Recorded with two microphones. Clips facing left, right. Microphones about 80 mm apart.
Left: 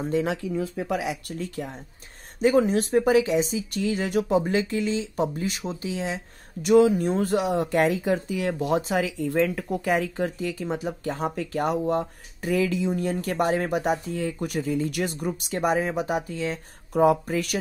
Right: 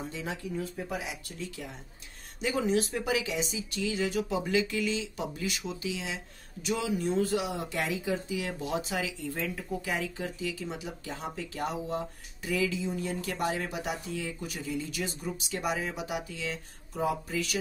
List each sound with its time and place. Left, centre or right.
0.2 s speech: left
1.0 s speech: left
16.9 s speech: left